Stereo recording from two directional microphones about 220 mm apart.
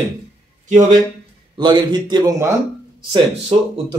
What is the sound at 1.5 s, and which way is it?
A man's voice, 20° right (ahead or behind).